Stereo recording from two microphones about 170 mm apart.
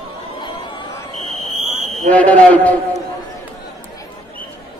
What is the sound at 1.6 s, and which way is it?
Fire alarm, 45° right (ahead or behind).